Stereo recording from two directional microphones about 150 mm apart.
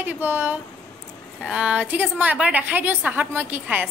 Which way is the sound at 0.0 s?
10° right (ahead or behind).